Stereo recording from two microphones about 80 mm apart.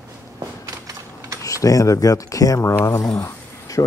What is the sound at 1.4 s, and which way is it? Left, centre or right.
Speech, left.